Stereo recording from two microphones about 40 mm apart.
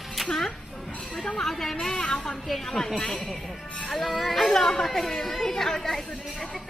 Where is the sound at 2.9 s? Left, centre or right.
Left.